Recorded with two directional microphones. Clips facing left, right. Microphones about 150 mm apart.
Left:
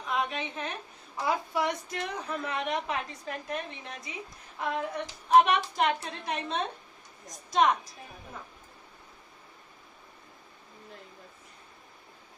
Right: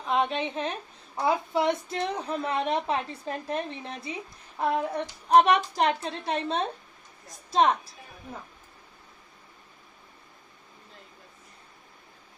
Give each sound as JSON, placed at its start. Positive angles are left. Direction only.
{"t": 0.0, "sound": "a woman's voice", "side_deg": -30}